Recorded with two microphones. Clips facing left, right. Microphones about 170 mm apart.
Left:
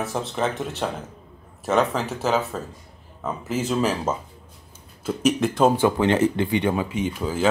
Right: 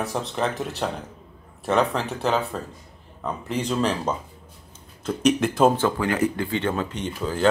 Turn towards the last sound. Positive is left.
turn(degrees=5)  # may be behind; listen again after turning